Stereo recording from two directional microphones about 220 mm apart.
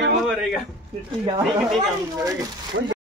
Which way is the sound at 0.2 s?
Centre (ahead or behind).